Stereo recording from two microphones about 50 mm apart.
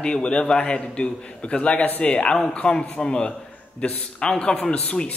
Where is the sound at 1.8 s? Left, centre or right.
Left.